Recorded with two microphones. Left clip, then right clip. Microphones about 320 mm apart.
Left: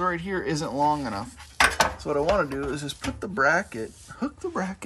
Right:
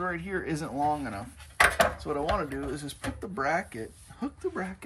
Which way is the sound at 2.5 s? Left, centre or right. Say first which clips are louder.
Left 5 dB; left.